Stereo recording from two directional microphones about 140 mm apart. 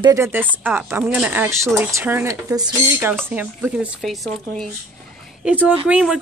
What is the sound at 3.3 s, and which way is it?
Speech, 10° right (ahead or behind).